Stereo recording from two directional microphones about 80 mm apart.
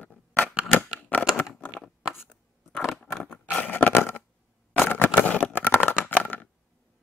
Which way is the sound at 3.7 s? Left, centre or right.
Left.